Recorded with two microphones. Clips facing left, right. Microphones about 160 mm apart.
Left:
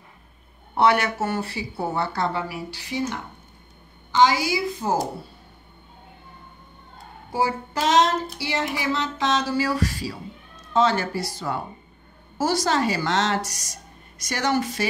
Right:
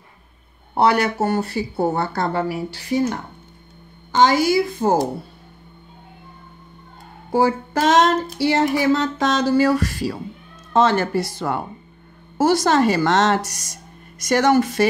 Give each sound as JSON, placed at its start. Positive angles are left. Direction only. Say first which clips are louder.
{"t": 0.7, "sound": "music", "louder": "right 3 dB", "side_deg": -35}
{"t": 7.3, "sound": "music", "louder": "right 6 dB", "side_deg": -55}
{"t": 11.3, "sound": "speech", "louder": "right 5 dB", "side_deg": -60}
{"t": 12.4, "sound": "music", "louder": "right 6 dB", "side_deg": -55}